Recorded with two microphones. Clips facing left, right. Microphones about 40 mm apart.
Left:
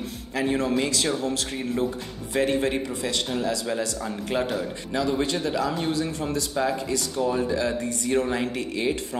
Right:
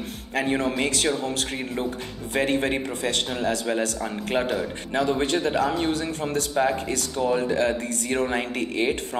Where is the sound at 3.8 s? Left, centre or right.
Right.